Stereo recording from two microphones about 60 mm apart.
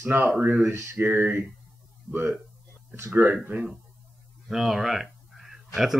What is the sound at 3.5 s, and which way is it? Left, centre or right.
Speech, right.